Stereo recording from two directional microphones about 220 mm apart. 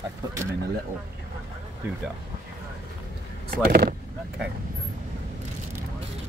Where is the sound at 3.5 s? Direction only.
40° right (ahead or behind).